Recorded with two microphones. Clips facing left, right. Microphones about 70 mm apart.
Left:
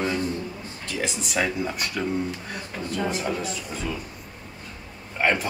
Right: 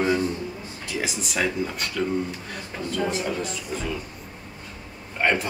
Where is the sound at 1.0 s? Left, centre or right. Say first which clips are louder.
Left 1 dB; centre.